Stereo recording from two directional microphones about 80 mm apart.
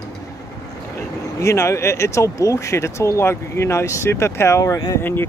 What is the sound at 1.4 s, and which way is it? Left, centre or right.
Speech, left.